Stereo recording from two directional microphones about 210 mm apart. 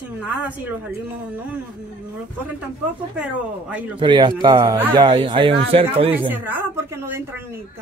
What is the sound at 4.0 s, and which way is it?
Speech, 20° right (ahead or behind).